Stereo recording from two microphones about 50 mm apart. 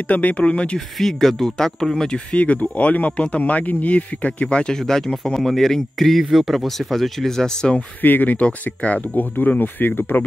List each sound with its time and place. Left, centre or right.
0.1 s speech: left
0.7 s speech: centre
2.3 s speech: left
4.7 s speech: centre
8.0 s speech: left